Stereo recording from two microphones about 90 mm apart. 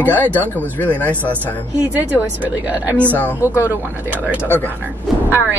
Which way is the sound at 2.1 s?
20° right (ahead or behind).